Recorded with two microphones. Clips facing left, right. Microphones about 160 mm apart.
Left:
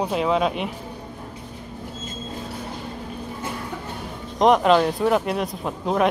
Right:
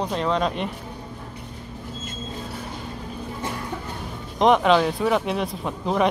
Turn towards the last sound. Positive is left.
turn(degrees=0)  # may be behind; listen again after turning